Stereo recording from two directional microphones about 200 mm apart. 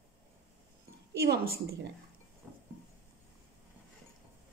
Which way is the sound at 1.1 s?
55° right (ahead or behind).